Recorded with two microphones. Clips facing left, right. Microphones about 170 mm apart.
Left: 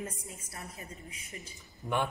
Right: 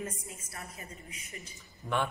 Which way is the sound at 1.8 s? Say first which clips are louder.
Even; 15° left (ahead or behind).